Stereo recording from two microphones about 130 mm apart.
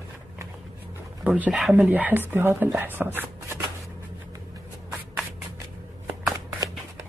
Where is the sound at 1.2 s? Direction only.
10° right (ahead or behind).